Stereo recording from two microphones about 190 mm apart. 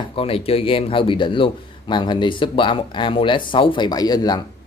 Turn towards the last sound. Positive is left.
turn(degrees=20)  # may be behind; listen again after turning